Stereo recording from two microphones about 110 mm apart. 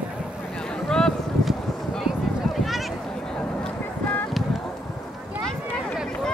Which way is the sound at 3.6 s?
15° left (ahead or behind).